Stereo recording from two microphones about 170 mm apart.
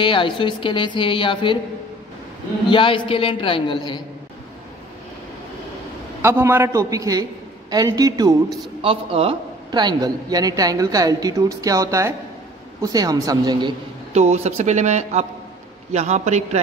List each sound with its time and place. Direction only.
0.0 s a woman's voice: 30° left (ahead or behind)
2.7 s a woman's voice: 30° left (ahead or behind)
6.2 s a man's voice: 15° right (ahead or behind)
8.8 s a man's voice: 35° right (ahead or behind)
14.1 s speech: 40° right (ahead or behind)